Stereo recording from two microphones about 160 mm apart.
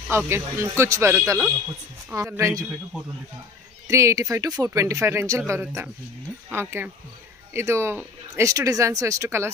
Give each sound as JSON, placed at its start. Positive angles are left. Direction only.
{"t": 0.3, "sound": "speech", "side_deg": -15}
{"t": 3.8, "sound": "speech", "side_deg": -20}